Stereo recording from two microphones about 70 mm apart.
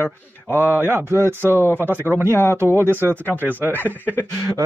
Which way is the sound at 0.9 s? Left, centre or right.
Right.